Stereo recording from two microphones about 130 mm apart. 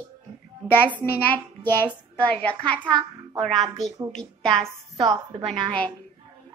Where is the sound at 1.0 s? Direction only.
10° left (ahead or behind).